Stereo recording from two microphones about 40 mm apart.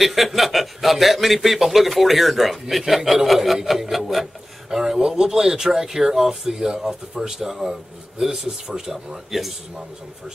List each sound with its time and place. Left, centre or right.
0.0 s a man's voice: centre